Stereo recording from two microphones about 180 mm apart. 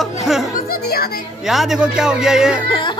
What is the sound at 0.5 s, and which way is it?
Music, 55° left (ahead or behind).